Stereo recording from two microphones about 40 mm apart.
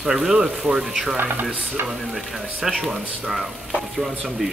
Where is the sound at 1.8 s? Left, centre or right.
Right.